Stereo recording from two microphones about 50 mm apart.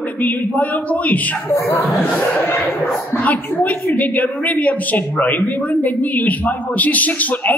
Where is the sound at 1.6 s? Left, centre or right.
Left.